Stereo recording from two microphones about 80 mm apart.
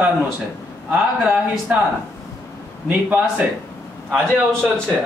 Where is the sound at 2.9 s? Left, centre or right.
Centre.